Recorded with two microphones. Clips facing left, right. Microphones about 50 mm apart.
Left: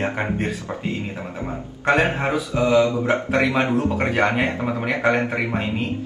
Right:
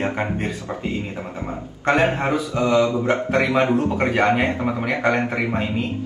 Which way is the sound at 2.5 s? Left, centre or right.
Centre.